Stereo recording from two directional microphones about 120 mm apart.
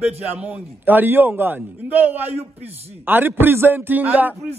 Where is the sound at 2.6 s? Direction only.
60° right (ahead or behind).